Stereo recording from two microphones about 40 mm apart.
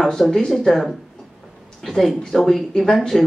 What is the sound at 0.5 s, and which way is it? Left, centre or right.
Speech, centre.